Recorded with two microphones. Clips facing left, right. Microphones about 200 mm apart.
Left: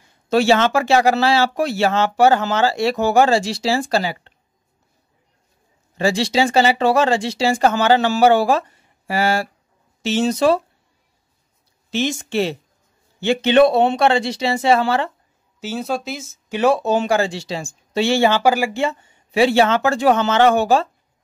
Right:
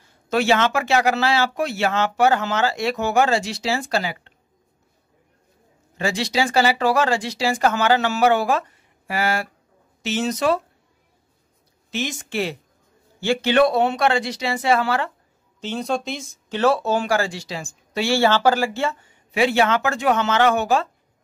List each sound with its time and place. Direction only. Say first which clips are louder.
0.3 s speech: left 4 dB; 30° left (ahead or behind)
5.9 s speech: left 5 dB; 30° left (ahead or behind)
11.9 s speech: left 6 dB; 25° left (ahead or behind)
15.6 s speech: left 1 dB; 5° left (ahead or behind)
19.3 s speech: left 4 dB; 30° left (ahead or behind)